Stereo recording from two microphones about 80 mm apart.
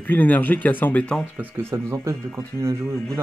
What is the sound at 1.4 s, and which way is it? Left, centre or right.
Speech, right.